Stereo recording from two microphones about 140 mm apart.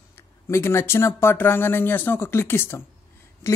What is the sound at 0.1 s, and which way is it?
A woman's voice, 15° left (ahead or behind).